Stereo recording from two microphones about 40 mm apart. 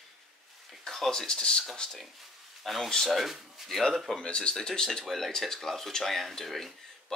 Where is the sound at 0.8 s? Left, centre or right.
Centre.